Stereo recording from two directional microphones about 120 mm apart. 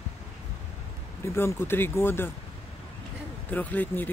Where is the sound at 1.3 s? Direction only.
20° left (ahead or behind).